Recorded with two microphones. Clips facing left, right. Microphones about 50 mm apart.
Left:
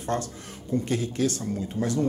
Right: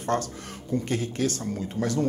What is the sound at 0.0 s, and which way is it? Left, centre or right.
Speech, right.